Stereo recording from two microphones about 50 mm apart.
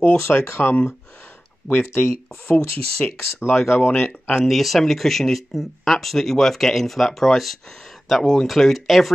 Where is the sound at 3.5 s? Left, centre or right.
Centre.